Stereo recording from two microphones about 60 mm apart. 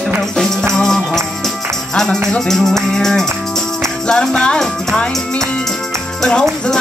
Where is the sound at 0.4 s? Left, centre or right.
Centre.